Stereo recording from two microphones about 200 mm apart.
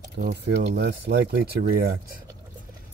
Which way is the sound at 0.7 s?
60° right (ahead or behind).